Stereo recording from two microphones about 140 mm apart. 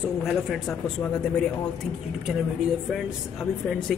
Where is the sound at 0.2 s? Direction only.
Centre (ahead or behind).